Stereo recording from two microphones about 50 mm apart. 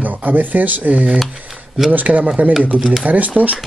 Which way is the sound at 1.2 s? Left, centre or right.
Centre.